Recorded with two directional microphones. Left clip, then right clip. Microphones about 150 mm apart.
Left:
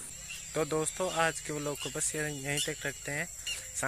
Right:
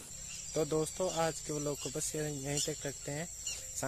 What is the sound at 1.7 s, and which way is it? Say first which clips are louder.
Speech: left 3 dB; 15° left (ahead or behind).